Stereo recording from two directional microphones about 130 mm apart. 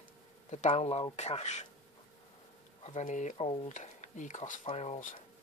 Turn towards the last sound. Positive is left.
turn(degrees=70)  # may be behind; listen again after turning